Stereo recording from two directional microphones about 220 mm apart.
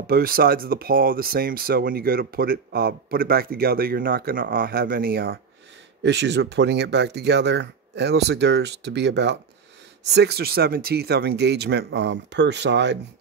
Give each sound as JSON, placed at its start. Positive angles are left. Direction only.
{"t": 0.0, "sound": "speech", "side_deg": -40}